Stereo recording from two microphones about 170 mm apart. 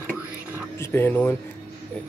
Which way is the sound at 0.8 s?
15° left (ahead or behind).